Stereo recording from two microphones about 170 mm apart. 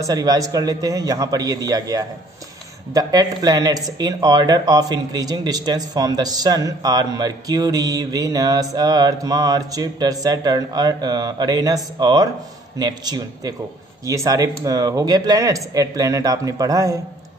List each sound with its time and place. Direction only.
0.0 s speech: 25° right (ahead or behind)